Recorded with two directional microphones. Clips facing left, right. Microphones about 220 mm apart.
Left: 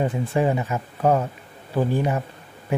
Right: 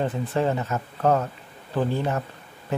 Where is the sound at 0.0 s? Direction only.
15° left (ahead or behind).